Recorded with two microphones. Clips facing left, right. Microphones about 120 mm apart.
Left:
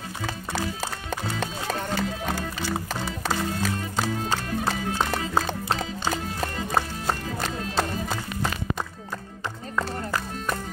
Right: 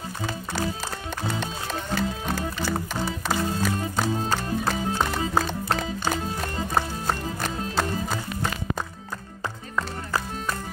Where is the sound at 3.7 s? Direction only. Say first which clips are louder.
Right 2 dB; 30° right (ahead or behind).